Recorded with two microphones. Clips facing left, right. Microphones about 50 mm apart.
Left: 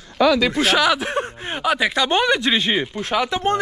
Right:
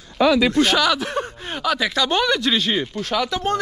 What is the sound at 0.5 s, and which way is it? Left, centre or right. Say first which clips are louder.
Speech: even; centre.